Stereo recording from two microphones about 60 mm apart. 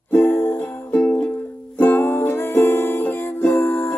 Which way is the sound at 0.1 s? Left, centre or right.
Left.